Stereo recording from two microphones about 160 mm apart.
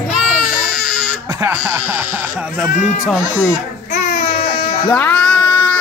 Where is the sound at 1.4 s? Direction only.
10° right (ahead or behind).